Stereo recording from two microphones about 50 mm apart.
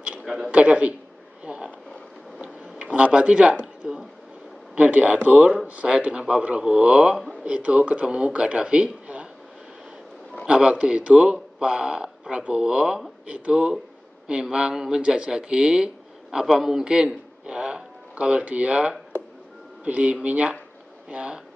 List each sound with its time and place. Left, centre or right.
0.2 s a sound: centre
0.5 s speech: right
2.8 s speech: right
4.7 s speech: right
10.4 s a man's voice: centre